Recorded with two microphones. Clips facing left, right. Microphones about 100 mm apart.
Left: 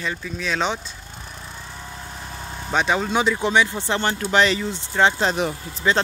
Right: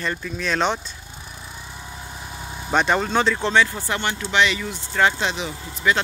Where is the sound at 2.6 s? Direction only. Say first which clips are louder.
Right 1 dB; centre (ahead or behind); by 4.1 s 25° left (ahead or behind).